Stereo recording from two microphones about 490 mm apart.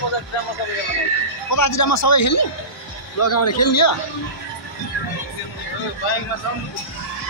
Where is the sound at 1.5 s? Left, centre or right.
Left.